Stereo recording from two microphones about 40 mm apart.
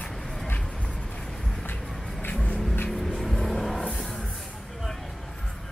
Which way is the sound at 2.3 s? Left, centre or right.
Left.